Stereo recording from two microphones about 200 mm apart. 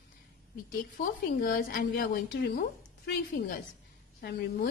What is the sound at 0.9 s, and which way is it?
A woman's voice, 45° left (ahead or behind).